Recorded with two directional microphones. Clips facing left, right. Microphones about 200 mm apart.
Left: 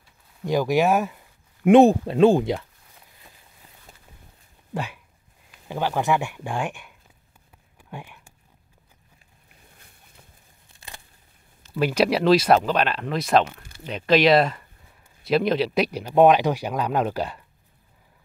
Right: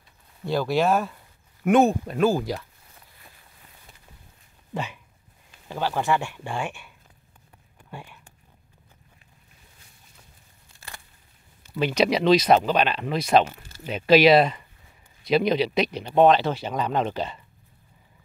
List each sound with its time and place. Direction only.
0.5 s speech: 15° left (ahead or behind)
1.7 s speech: 30° left (ahead or behind)
4.7 s speech: 10° left (ahead or behind)
7.9 s whispering: 10° left (ahead or behind)
11.7 s speech: 5° left (ahead or behind)